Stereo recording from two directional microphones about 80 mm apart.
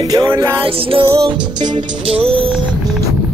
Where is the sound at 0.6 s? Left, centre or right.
Right.